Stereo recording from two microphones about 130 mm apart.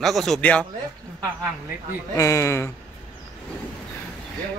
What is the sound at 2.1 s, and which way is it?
Speech, 20° left (ahead or behind).